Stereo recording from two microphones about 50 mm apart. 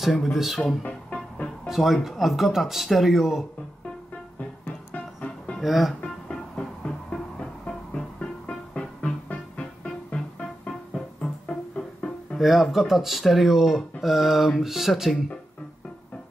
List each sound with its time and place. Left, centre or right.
0.1 s speech: centre
0.8 s music: left
1.7 s speech: centre
4.9 s music: left
5.6 s speech: centre
6.2 s music: centre
12.4 s speech: centre